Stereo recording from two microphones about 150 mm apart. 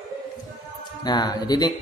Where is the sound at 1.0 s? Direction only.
25° left (ahead or behind).